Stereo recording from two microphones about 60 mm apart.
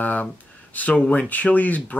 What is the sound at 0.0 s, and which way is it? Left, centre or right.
Speech, left.